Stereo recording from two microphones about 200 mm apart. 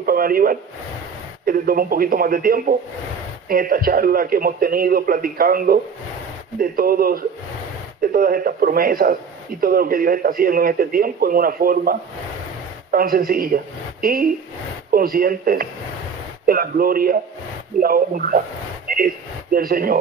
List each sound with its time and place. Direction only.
0.0 s speech: 45° right (ahead or behind)
14.9 s speech: 45° right (ahead or behind)
18.9 s a sound: 45° right (ahead or behind)
19.5 s speech: 45° right (ahead or behind)